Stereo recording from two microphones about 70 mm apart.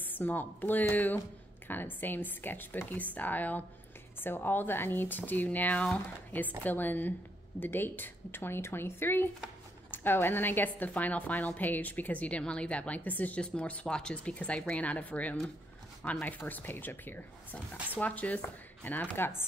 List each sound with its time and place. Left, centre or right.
0.0 s a woman's voice: left